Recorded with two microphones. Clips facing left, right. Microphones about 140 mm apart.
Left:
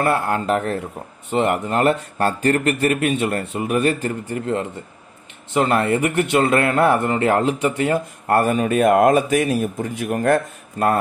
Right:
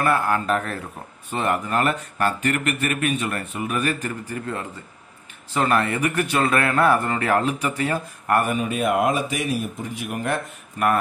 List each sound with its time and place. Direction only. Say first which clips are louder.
0.0 s speech: left 2 dB; 25° left (ahead or behind)
8.5 s speech: left 6 dB; 50° left (ahead or behind)